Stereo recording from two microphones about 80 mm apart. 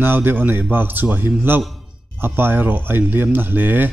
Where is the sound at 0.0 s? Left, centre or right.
Right.